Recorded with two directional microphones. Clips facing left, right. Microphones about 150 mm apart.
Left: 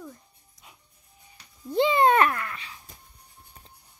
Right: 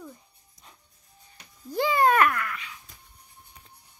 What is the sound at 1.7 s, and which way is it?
Babbling, 25° left (ahead or behind).